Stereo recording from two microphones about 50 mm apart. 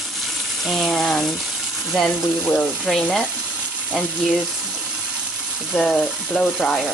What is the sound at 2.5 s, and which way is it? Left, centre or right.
Frying, centre.